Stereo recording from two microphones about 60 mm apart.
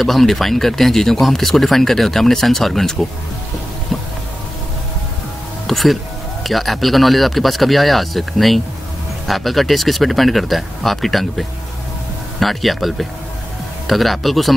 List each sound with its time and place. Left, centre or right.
0.0 s speech: centre
5.7 s speech: centre